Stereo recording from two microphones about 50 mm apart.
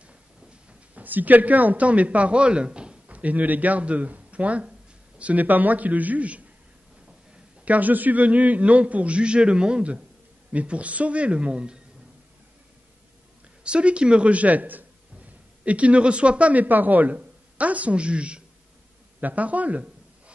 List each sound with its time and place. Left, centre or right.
0.9 s a man's voice: right
7.6 s a man's voice: right
13.7 s a man's voice: right
19.1 s a man's voice: right